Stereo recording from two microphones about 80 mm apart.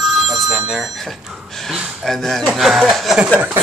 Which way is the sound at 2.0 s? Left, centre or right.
Centre.